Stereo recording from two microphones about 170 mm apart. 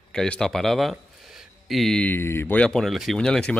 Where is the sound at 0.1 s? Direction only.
5° left (ahead or behind).